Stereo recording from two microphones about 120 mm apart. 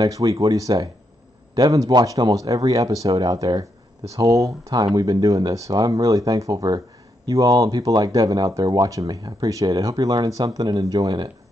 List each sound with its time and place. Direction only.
0.0 s speech: 30° right (ahead or behind)